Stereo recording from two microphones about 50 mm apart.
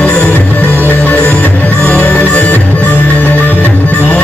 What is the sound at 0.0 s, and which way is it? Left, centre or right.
Music, left.